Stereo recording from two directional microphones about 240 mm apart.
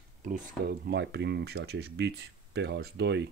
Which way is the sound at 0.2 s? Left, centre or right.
Right.